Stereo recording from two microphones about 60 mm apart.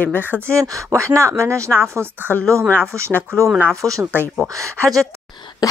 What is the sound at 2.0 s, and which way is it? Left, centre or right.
Speech, right.